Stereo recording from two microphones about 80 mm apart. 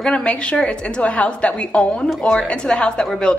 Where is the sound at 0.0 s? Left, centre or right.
Centre.